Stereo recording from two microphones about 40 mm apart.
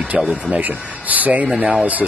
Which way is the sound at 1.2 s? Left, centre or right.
Right.